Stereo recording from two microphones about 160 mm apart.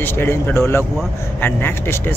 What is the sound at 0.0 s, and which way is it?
Speech, 15° left (ahead or behind).